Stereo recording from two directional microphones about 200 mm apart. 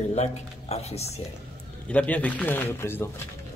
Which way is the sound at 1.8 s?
5° left (ahead or behind).